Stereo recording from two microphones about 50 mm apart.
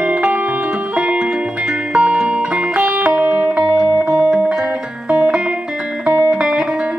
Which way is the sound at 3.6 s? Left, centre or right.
Centre.